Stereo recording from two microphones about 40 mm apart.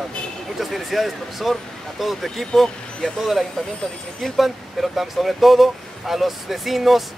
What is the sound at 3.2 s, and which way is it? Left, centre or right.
Speech, centre.